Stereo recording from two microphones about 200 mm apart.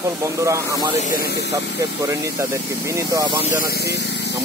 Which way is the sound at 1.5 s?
15° right (ahead or behind).